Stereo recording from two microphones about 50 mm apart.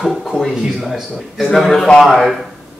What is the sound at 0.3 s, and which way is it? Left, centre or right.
A man's voice, centre.